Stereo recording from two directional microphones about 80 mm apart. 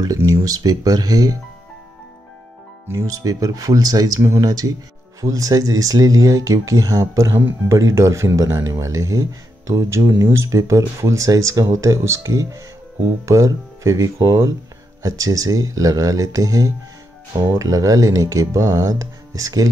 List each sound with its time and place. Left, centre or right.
0.0 s speech: right
2.9 s speech: right